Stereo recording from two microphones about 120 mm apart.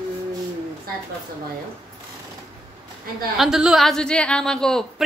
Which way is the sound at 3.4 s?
5° right (ahead or behind).